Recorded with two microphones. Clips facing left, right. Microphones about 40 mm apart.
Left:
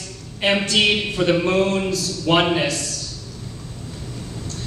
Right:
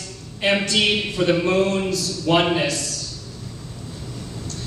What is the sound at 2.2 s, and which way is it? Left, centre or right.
Speech, left.